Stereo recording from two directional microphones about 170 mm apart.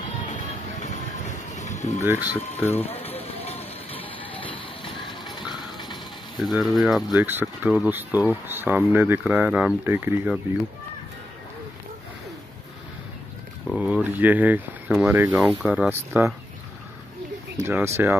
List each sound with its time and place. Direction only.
0.3 s music: 45° left (ahead or behind)
1.5 s a sound: 45° left (ahead or behind)
2.0 s speech: 10° right (ahead or behind)
2.6 s speech: 10° left (ahead or behind)
2.9 s vehicle: 35° left (ahead or behind)
5.3 s a sound: 25° left (ahead or behind)
6.4 s speech: centre (ahead or behind)
13.7 s speech: 5° right (ahead or behind)
17.6 s speech: 15° right (ahead or behind)